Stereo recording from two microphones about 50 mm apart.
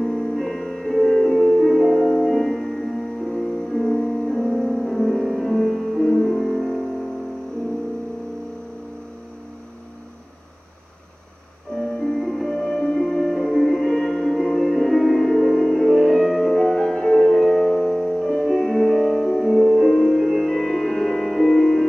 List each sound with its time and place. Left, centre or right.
0.0 s music: centre
12.0 s music: centre
17.4 s music: centre